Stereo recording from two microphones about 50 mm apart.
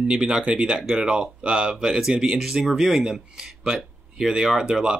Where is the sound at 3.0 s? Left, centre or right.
Centre.